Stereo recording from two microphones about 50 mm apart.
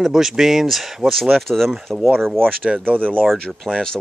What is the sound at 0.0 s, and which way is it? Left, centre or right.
Speech, centre.